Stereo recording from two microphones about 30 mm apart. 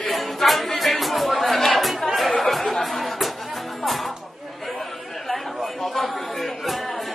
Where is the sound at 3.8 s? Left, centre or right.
Centre.